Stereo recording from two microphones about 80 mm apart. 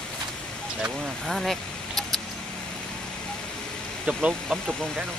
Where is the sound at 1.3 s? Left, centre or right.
Centre.